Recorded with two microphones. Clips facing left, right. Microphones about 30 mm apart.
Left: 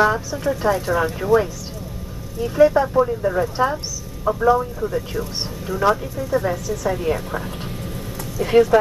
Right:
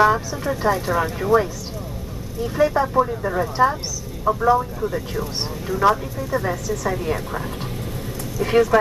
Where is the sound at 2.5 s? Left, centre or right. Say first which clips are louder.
Left 3 dB; centre.